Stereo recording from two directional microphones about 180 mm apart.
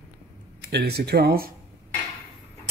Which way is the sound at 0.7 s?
60° right (ahead or behind).